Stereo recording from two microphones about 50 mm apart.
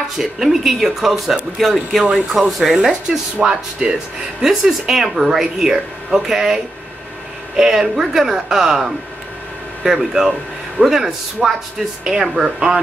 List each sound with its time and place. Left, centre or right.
0.2 s speech: centre
2.9 s speech: centre